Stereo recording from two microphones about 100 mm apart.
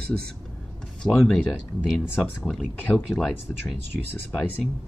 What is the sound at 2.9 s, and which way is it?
Speech, 15° left (ahead or behind).